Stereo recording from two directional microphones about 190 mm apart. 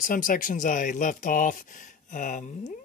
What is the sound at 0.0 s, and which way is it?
Speech, 45° left (ahead or behind).